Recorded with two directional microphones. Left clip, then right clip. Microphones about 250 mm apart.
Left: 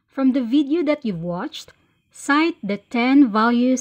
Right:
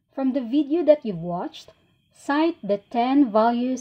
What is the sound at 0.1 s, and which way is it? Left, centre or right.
Speech, left.